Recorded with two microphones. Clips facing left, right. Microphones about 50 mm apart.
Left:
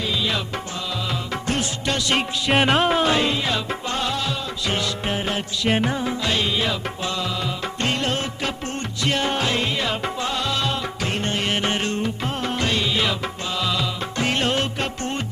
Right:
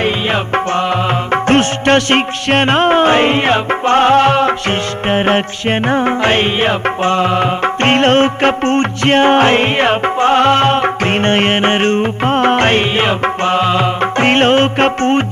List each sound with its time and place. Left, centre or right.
1.3 s music: right